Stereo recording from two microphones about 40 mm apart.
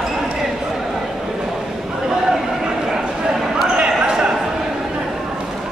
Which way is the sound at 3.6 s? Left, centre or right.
Right.